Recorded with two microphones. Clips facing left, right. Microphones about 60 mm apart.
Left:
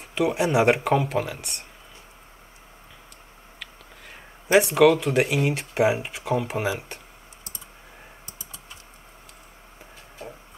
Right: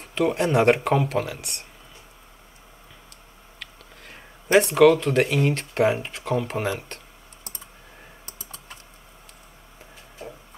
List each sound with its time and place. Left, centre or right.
0.0 s speech: centre
4.1 s speech: centre
8.3 s typing: right